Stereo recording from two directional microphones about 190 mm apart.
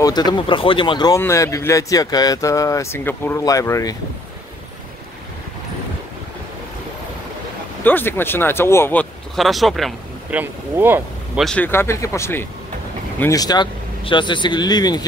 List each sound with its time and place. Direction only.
0.0 s speech: 20° left (ahead or behind)
7.8 s speech: 10° left (ahead or behind)
9.3 s speech: centre (ahead or behind)
10.4 s speech: 10° right (ahead or behind)
11.4 s speech: 10° left (ahead or behind)